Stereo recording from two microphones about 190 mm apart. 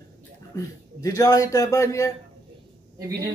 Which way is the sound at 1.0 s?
20° left (ahead or behind).